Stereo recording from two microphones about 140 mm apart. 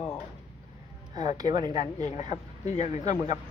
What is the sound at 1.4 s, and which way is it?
Speech, 30° right (ahead or behind).